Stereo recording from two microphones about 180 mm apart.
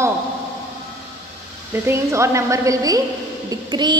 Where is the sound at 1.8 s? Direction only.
15° right (ahead or behind).